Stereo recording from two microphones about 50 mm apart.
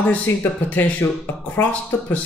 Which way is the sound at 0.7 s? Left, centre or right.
Left.